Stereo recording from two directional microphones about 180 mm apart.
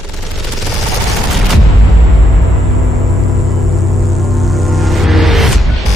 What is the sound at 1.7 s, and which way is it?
Music, centre (ahead or behind).